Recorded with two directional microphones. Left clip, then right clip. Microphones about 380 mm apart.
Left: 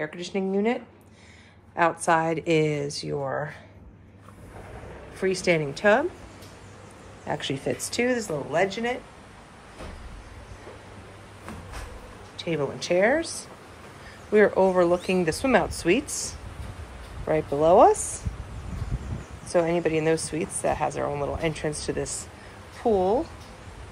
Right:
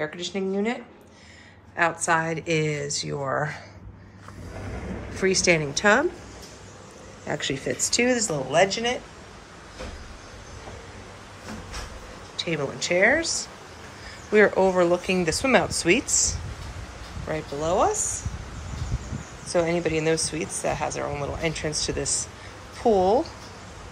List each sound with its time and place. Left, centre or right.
0.0 s speech: centre
1.8 s speech: centre
5.1 s speech: centre
7.2 s speech: centre
12.4 s speech: centre
19.4 s speech: centre